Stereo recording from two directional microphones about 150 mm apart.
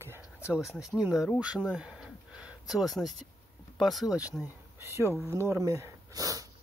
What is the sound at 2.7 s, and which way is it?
Speech, centre (ahead or behind).